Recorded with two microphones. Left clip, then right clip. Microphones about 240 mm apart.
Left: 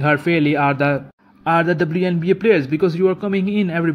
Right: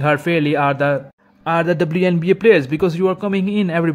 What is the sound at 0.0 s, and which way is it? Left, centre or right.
Speech, centre.